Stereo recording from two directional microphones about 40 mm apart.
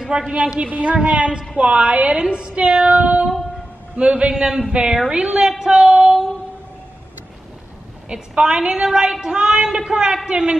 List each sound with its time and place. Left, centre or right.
0.3 s a woman's voice: right
4.5 s speech: centre
5.1 s a woman's voice: right
5.6 s a sound: centre
8.1 s a woman's voice: right